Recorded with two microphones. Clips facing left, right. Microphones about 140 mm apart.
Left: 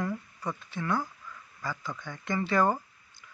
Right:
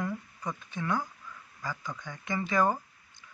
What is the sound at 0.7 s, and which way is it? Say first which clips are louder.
Speech: left 1 dB; 15° right (ahead or behind).